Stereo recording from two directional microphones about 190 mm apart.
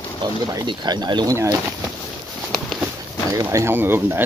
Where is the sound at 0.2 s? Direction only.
20° right (ahead or behind).